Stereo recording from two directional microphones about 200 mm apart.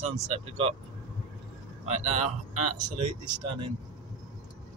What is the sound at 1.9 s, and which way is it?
Speech, 35° right (ahead or behind).